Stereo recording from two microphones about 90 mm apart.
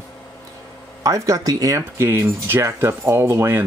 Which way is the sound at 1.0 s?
40° right (ahead or behind).